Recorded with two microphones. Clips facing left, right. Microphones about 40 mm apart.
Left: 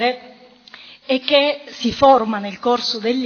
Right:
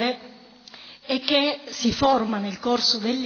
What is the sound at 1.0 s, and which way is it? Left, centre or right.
A woman's voice, left.